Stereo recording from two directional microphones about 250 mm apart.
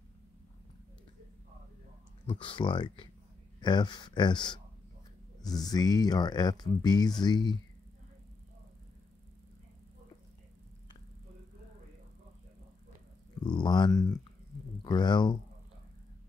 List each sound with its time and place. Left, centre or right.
2.2 s speech: left
13.4 s speech: centre